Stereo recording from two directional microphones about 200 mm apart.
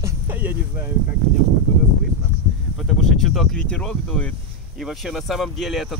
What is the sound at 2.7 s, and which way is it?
Speech, centre (ahead or behind).